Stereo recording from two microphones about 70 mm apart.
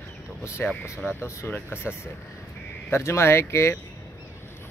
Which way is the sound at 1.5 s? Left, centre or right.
Left.